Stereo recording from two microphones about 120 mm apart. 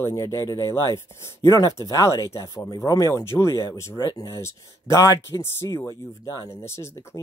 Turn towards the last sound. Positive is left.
turn(degrees=20)  # may be behind; listen again after turning